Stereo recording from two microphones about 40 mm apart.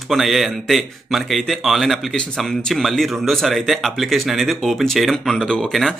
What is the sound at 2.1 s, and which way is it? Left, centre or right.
Speech, centre.